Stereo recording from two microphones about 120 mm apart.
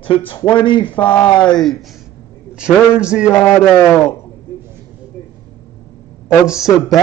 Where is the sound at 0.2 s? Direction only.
15° left (ahead or behind).